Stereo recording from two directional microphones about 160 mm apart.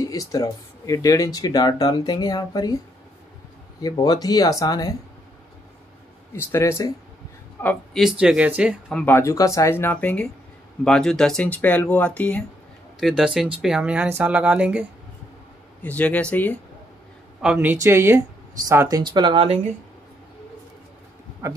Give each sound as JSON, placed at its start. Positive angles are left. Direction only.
{"t": 0.0, "sound": "speech", "side_deg": 20}
{"t": 3.8, "sound": "speech", "side_deg": 25}
{"t": 6.3, "sound": "speech", "side_deg": 15}
{"t": 7.6, "sound": "speech", "side_deg": 0}
{"t": 8.9, "sound": "speech", "side_deg": 10}
{"t": 13.0, "sound": "speech", "side_deg": -5}
{"t": 15.8, "sound": "speech", "side_deg": 10}
{"t": 17.4, "sound": "speech", "side_deg": -10}
{"t": 21.4, "sound": "speech", "side_deg": -20}